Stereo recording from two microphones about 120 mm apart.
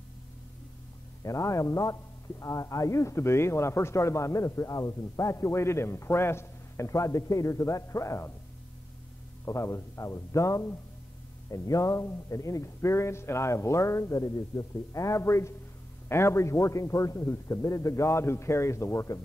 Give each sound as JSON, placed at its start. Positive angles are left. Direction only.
{"t": 1.2, "sound": "a man's voice", "side_deg": 25}
{"t": 9.4, "sound": "a man's voice", "side_deg": 25}